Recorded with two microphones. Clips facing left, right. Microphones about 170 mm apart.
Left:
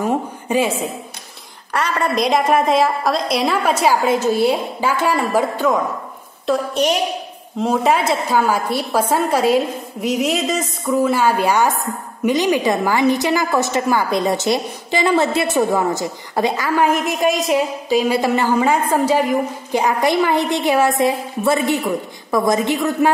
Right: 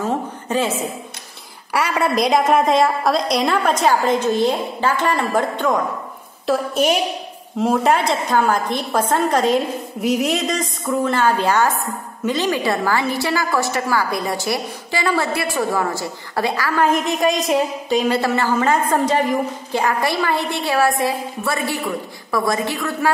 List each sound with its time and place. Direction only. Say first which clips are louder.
0.0 s a woman's voice: left 2 dB; 10° left (ahead or behind)
1.7 s a woman's voice: right 1 dB; 10° right (ahead or behind); by 16.9 s 20° left (ahead or behind)
17.0 s a woman's voice: left 1 dB; centre (ahead or behind); by 23.1 s 20° left (ahead or behind)